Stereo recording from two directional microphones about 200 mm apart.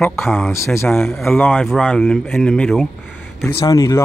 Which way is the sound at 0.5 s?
15° left (ahead or behind).